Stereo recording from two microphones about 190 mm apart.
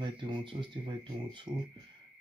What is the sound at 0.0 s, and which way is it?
Speech, 25° right (ahead or behind).